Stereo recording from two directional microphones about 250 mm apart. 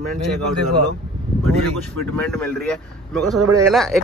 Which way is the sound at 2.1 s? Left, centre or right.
Centre.